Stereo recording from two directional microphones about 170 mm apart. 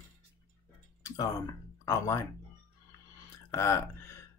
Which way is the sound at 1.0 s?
20° left (ahead or behind).